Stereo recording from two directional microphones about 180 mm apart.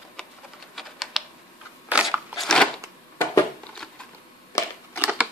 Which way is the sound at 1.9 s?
5° right (ahead or behind).